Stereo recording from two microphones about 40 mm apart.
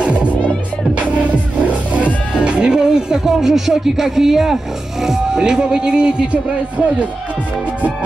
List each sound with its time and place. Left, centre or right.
0.0 s music: right
2.4 s speech: right